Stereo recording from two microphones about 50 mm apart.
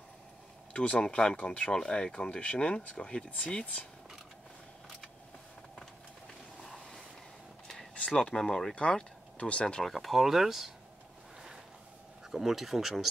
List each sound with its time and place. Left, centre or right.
0.7 s speech: left
8.4 s speech: centre
8.7 s speech: left
9.9 s speech: centre
12.3 s speech: centre